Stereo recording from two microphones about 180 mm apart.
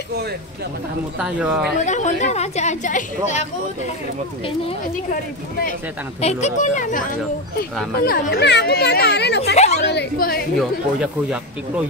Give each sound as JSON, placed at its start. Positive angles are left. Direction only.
{"t": 1.2, "sound": "speech", "side_deg": -5}
{"t": 1.8, "sound": "a woman's voice", "side_deg": 40}
{"t": 6.2, "sound": "speech", "side_deg": 40}
{"t": 8.0, "sound": "speech", "side_deg": 60}
{"t": 9.6, "sound": "chatter", "side_deg": 40}
{"t": 9.8, "sound": "speech", "side_deg": 60}
{"t": 10.6, "sound": "speech", "side_deg": 0}